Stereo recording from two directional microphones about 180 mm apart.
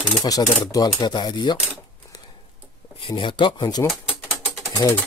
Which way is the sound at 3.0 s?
25° left (ahead or behind).